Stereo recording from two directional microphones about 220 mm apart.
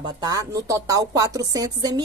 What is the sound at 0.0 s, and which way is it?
A woman's voice, 15° right (ahead or behind).